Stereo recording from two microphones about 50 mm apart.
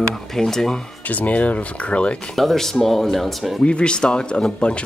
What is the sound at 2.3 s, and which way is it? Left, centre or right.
Speech, centre.